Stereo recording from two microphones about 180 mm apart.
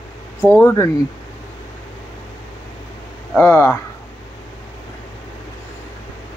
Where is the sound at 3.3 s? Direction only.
10° left (ahead or behind).